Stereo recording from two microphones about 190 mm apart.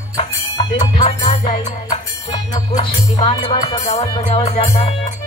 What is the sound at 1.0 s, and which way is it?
Music, 30° left (ahead or behind).